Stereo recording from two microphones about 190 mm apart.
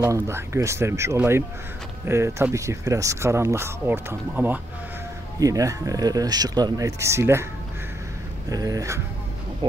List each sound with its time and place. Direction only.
0.0 s speech: 15° right (ahead or behind)
8.5 s speech: 20° right (ahead or behind)